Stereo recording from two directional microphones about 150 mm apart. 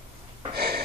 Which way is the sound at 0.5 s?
90° right.